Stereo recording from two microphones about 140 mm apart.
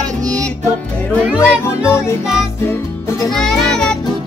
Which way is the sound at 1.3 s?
20° left (ahead or behind).